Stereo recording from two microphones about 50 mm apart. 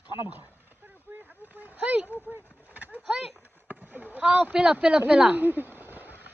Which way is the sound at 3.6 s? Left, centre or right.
Right.